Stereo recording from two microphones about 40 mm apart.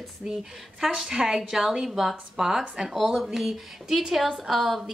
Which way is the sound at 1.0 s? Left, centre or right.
Centre.